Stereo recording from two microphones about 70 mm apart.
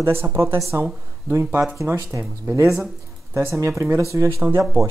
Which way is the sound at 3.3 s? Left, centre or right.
Right.